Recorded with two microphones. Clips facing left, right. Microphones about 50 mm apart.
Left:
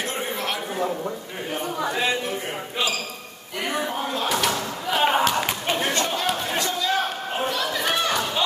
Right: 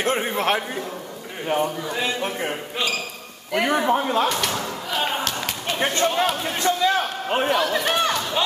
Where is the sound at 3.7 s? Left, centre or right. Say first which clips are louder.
Right 5 dB; right.